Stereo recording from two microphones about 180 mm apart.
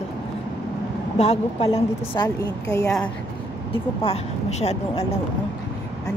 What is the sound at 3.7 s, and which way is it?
Speech, 30° left (ahead or behind).